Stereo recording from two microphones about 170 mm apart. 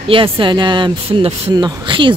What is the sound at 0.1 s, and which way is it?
A woman's voice, 30° right (ahead or behind).